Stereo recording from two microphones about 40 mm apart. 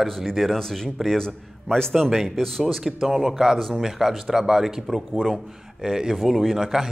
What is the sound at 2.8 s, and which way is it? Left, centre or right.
A man's voice, centre.